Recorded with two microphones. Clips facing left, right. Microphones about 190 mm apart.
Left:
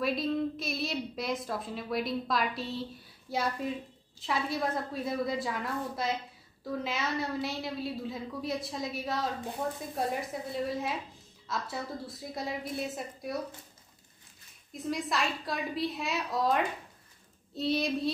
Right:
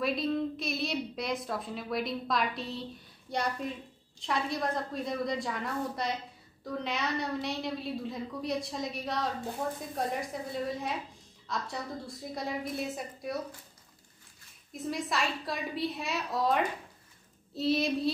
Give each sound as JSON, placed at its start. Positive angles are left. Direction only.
{"t": 0.0, "sound": "a woman's voice", "side_deg": 0}
{"t": 10.5, "sound": "a woman's voice", "side_deg": 0}
{"t": 14.7, "sound": "a woman's voice", "side_deg": 0}